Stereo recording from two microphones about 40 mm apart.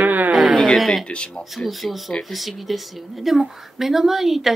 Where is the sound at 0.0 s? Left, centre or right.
Right.